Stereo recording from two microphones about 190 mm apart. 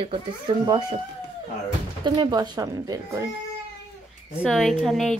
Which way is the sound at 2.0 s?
25° right (ahead or behind).